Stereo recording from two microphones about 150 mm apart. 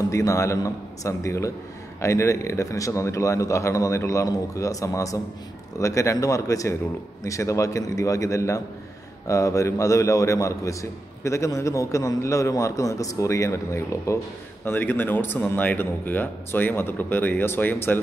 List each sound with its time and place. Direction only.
0.1 s a man's voice: 20° left (ahead or behind)